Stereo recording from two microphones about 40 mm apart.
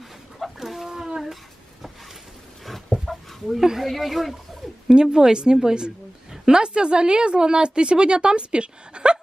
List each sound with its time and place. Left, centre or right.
0.6 s a sound: centre
3.1 s chicken: centre
3.8 s speech: centre
4.8 s a woman's voice: centre